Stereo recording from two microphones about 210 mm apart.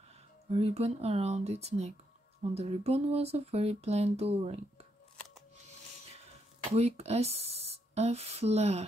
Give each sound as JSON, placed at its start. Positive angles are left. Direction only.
{"t": 0.5, "sound": "speech", "side_deg": -30}
{"t": 6.7, "sound": "speech", "side_deg": -30}